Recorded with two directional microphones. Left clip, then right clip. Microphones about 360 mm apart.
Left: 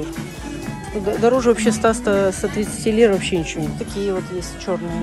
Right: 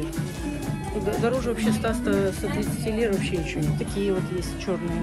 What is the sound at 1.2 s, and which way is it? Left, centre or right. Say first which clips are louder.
Speech: left 13 dB; centre.